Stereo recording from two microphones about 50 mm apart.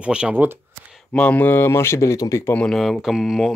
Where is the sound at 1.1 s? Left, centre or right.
Left.